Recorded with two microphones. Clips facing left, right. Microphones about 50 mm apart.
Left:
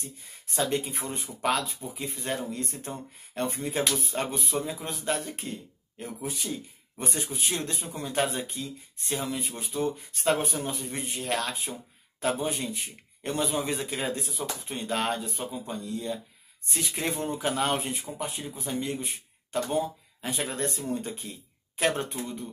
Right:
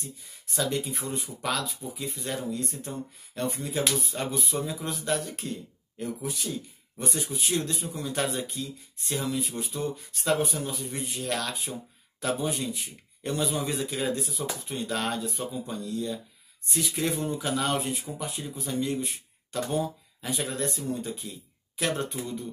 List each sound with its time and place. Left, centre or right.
0.6 s speech: left